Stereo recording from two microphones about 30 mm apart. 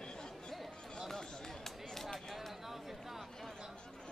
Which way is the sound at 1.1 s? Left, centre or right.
Centre.